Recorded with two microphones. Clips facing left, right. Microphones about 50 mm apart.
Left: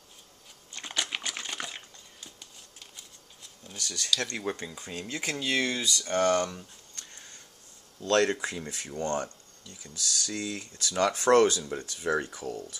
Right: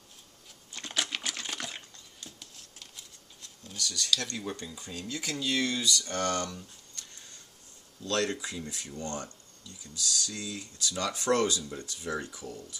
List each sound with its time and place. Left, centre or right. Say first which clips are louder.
0.9 s a sound: even; centre
3.7 s speech: even; left
8.0 s speech: left 6 dB; left